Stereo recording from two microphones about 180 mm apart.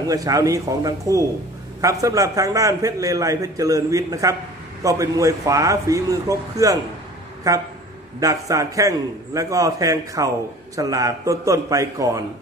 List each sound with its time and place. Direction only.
0.1 s a man's voice: 20° right (ahead or behind)